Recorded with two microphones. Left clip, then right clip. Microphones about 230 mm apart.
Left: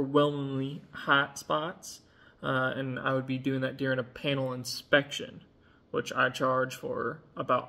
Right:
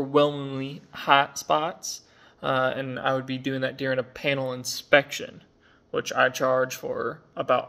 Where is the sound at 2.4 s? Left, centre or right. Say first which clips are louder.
Right 5 dB; centre.